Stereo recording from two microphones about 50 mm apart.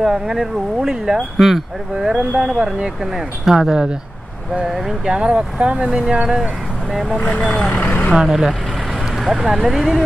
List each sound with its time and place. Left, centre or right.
0.0 s speech: centre
5.1 s speech: centre
7.2 s speech: left
8.2 s speech: centre